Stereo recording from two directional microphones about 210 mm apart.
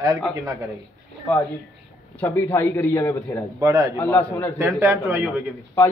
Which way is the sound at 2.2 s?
10° left (ahead or behind).